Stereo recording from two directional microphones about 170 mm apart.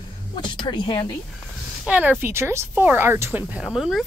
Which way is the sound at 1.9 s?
10° right (ahead or behind).